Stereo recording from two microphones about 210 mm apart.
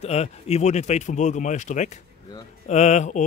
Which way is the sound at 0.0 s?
30° left (ahead or behind).